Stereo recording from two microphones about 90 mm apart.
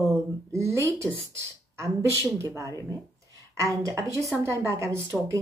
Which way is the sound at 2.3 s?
35° right (ahead or behind).